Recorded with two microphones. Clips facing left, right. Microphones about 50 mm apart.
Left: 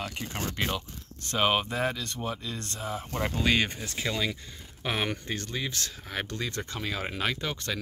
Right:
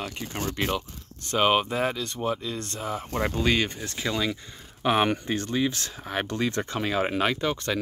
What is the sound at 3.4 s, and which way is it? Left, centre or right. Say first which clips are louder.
Speech: left 2 dB; centre.